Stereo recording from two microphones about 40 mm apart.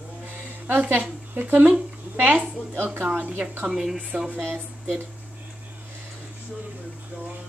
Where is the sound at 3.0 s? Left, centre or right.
Right.